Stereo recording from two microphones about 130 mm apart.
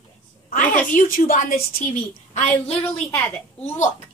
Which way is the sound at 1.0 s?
90° left.